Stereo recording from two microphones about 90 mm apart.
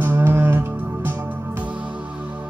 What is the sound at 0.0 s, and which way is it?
Music, 25° right (ahead or behind).